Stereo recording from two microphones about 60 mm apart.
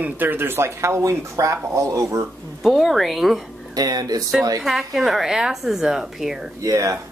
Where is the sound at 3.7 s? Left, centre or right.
Right.